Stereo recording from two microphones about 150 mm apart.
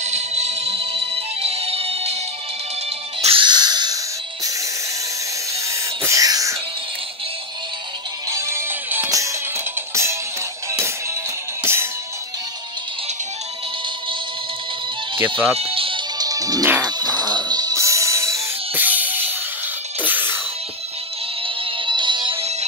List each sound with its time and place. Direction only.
0.0 s music: 50° right (ahead or behind)
3.2 s music: 40° right (ahead or behind)
5.7 s a sound: 20° right (ahead or behind)
8.3 s music: 20° right (ahead or behind)
11.6 s music: 15° right (ahead or behind)
15.5 s music: 40° right (ahead or behind)
16.2 s music: 25° right (ahead or behind)
21.6 s music: 35° right (ahead or behind)